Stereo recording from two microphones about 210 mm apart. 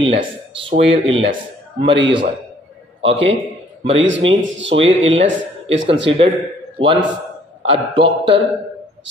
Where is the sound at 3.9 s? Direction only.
60° right (ahead or behind).